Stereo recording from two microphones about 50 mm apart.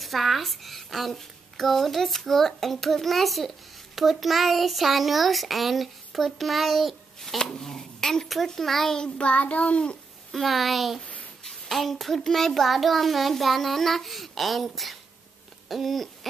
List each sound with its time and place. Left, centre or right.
0.0 s a child's voice: centre
9.2 s child singing: left
10.3 s speech: centre